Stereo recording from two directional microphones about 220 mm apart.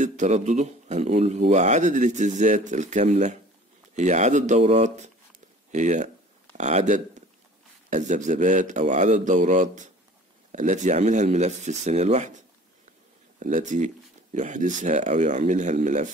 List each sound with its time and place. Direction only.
0.0 s speech: 35° right (ahead or behind)